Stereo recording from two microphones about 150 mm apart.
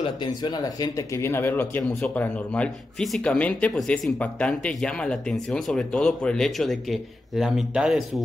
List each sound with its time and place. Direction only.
0.0 s speech: 30° left (ahead or behind); by 8.2 s 5° right (ahead or behind)